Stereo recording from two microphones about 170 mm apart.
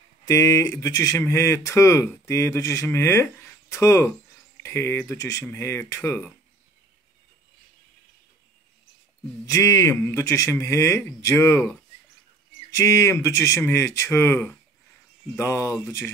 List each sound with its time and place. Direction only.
0.3 s speech: 20° left (ahead or behind)
9.5 s speech: 15° left (ahead or behind)